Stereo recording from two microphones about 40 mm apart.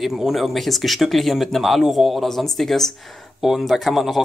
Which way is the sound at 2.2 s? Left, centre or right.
Centre.